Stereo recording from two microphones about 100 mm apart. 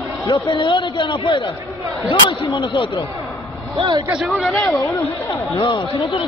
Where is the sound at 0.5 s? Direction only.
55° left (ahead or behind).